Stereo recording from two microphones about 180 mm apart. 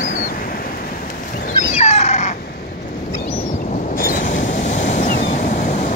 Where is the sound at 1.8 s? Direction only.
35° left (ahead or behind).